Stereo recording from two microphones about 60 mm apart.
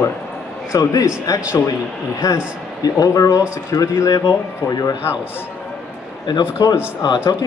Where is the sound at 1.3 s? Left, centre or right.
Left.